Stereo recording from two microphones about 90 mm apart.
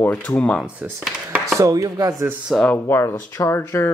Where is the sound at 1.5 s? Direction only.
40° right (ahead or behind).